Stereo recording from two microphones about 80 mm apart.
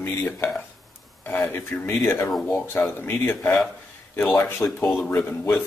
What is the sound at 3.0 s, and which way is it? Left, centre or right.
Dishes, left.